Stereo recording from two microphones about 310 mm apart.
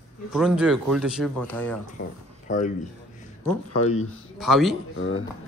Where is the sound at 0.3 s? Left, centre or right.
Centre.